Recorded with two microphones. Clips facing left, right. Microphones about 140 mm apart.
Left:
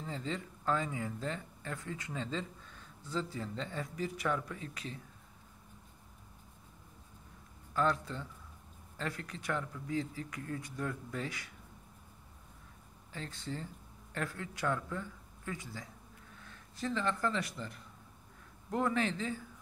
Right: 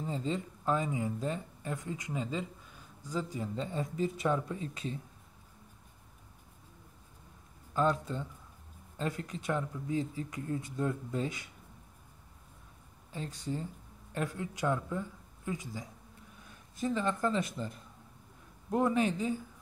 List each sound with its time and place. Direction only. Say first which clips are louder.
0.0 s speech: right 5 dB; 20° right (ahead or behind)
7.7 s speech: right 2 dB; 20° right (ahead or behind)
13.1 s speech: right 4 dB; 15° right (ahead or behind)